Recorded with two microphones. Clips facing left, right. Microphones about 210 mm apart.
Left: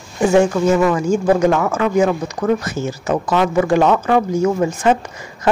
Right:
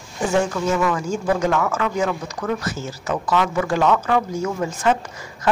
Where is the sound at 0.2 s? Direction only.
15° left (ahead or behind).